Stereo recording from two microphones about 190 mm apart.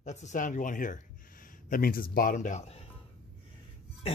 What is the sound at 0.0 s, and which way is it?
Speech, 40° left (ahead or behind).